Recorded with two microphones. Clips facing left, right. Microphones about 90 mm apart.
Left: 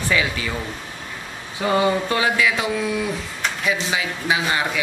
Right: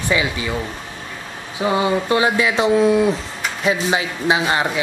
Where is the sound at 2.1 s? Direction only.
25° right (ahead or behind).